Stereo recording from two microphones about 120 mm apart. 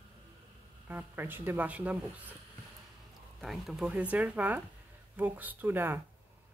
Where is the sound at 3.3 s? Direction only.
Centre (ahead or behind).